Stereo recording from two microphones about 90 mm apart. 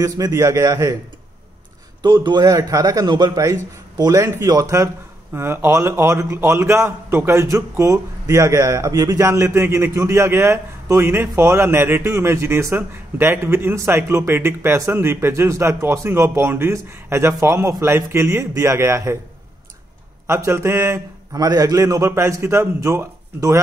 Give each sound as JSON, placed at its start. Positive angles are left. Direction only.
{"t": 0.0, "sound": "a man's voice", "side_deg": -40}
{"t": 2.2, "sound": "speech", "side_deg": -50}
{"t": 20.2, "sound": "a man's voice", "side_deg": -30}
{"t": 21.4, "sound": "a man's voice", "side_deg": -45}